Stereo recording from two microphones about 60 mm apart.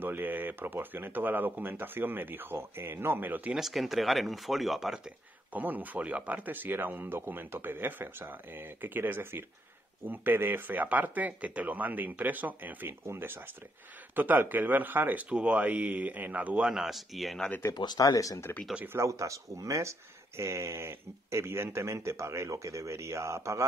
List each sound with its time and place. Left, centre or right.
0.0 s speech: right
3.5 s speech: centre
5.5 s speech: right
13.0 s speech: right
16.6 s speech: centre
17.9 s speech: left
18.9 s speech: right